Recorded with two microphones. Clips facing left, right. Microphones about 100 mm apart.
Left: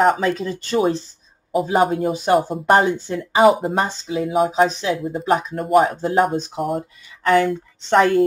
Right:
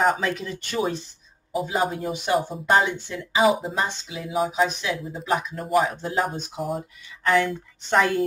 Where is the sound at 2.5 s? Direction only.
50° left (ahead or behind).